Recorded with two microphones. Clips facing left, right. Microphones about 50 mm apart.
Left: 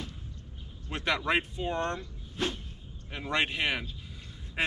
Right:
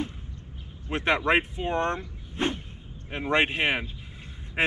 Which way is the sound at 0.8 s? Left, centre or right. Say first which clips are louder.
Right 6 dB; right.